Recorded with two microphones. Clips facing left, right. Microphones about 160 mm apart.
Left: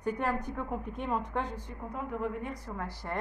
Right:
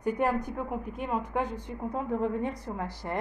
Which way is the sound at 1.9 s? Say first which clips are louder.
Right 5 dB; 30° right (ahead or behind).